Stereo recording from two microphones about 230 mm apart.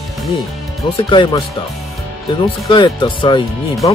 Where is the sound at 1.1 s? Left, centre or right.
Left.